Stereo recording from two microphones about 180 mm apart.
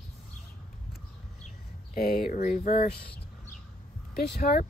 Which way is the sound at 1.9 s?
55° left (ahead or behind).